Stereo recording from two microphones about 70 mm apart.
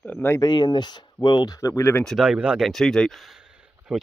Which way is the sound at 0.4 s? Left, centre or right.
Left.